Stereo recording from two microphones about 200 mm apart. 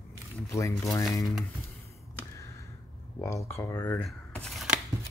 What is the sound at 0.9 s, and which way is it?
Speech, 15° left (ahead or behind).